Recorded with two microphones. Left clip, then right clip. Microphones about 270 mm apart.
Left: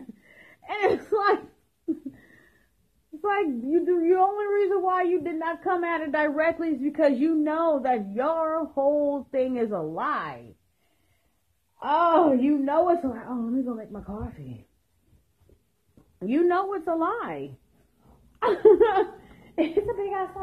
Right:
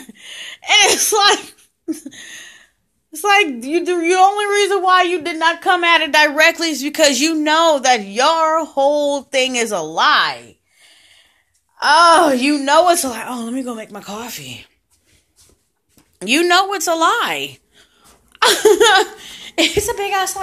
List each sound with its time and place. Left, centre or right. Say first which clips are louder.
0.5 s laughter: right 12 dB; right
3.2 s a woman's voice: right 12 dB; centre
11.8 s a woman's voice: right 11 dB; right
12.4 s speech: right 10 dB; centre
16.2 s a woman's voice: right 10 dB; centre